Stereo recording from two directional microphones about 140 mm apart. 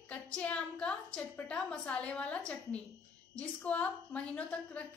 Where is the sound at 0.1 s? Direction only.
10° left (ahead or behind).